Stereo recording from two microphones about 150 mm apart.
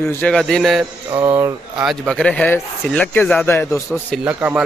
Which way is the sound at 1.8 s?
Centre (ahead or behind).